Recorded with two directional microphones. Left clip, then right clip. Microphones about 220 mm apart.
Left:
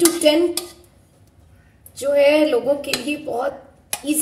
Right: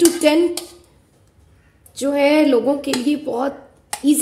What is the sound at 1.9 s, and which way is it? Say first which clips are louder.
A woman's voice: left 1 dB; 45° right (ahead or behind).